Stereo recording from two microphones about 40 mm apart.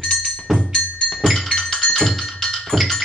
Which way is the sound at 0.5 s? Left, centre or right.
Left.